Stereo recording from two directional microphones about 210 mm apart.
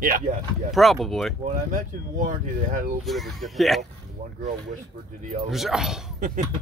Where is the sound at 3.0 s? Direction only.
Centre (ahead or behind).